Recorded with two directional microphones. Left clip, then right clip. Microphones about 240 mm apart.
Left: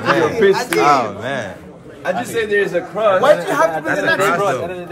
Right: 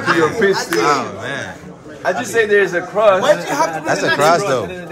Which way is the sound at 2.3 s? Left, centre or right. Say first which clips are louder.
Right 4 dB; right.